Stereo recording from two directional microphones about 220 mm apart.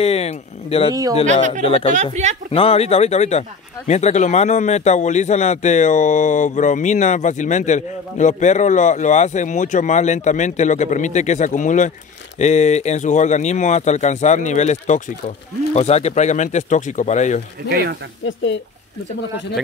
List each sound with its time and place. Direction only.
0.0 s speech: 30° left (ahead or behind)
2.2 s speech: 30° right (ahead or behind)
2.5 s speech: 25° left (ahead or behind)
17.6 s speech: 45° right (ahead or behind)